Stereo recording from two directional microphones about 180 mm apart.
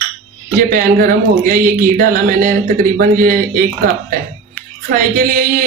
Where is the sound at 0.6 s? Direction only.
50° right (ahead or behind).